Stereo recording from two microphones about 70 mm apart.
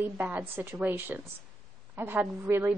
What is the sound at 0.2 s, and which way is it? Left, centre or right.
A woman's voice, right.